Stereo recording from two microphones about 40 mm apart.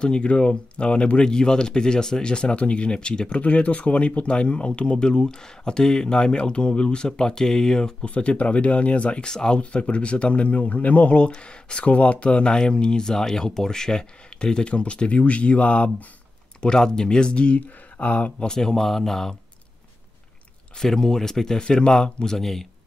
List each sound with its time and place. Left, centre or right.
0.0 s speech: left
8.0 s speech: left
9.2 s speech: centre
9.6 s speech: left
16.6 s speech: centre
17.6 s speech: left
18.5 s speech: centre
20.7 s speech: centre